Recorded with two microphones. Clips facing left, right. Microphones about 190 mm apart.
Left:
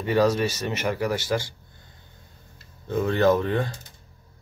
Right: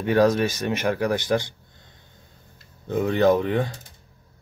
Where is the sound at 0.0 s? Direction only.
15° right (ahead or behind).